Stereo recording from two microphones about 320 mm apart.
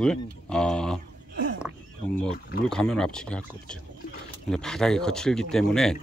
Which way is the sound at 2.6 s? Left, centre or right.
Centre.